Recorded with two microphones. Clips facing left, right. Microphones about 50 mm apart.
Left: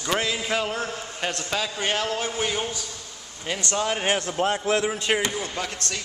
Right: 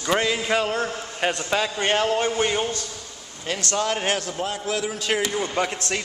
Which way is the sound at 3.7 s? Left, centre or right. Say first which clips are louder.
Even; centre.